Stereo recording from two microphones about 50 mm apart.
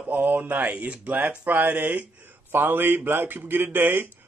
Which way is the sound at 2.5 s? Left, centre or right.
Right.